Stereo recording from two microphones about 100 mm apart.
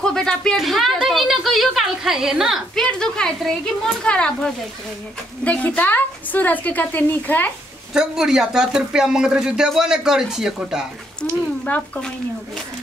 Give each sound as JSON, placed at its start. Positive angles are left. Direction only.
{"t": 0.0, "sound": "speech", "side_deg": 5}
{"t": 2.8, "sound": "speech", "side_deg": 10}
{"t": 7.9, "sound": "speech", "side_deg": -5}
{"t": 11.6, "sound": "speech", "side_deg": 15}